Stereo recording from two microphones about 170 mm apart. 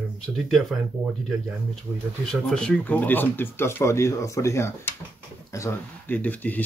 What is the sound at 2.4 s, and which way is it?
Speech, 5° left (ahead or behind).